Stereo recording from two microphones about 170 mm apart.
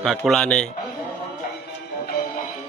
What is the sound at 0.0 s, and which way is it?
Speech, 5° left (ahead or behind).